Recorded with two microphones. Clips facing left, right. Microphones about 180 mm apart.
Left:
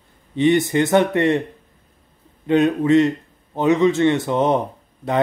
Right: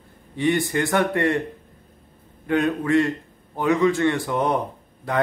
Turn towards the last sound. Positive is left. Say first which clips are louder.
# left 4 dB
turn(degrees=25)  # may be behind; listen again after turning